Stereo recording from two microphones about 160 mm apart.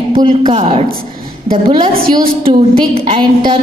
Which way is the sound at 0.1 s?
40° right (ahead or behind).